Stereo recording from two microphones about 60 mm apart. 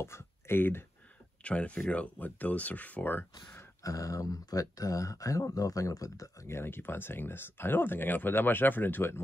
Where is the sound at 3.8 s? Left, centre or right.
Left.